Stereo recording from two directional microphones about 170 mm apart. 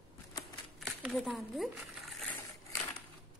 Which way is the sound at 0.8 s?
Centre (ahead or behind).